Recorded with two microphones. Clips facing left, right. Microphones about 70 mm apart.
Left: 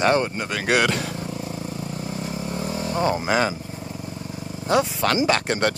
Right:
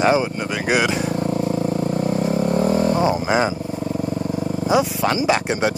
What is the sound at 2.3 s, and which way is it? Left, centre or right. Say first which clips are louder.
Wild animals: right 11 dB; right.